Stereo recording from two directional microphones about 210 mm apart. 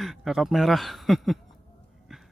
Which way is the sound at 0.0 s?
Centre (ahead or behind).